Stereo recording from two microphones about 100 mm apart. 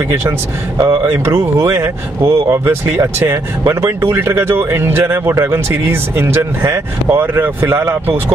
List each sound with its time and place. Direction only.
0.7 s speech: 30° right (ahead or behind)